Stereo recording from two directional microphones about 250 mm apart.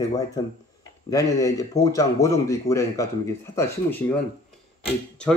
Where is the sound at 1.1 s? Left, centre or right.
Centre.